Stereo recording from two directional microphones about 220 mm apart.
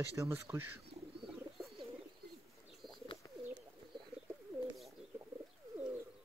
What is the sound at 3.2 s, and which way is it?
Bird, 15° left (ahead or behind).